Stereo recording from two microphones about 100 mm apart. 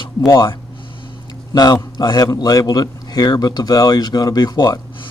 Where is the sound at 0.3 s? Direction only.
50° left (ahead or behind).